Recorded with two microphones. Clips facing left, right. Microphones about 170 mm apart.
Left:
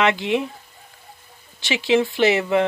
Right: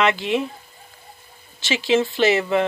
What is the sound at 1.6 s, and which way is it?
Speech, 20° left (ahead or behind).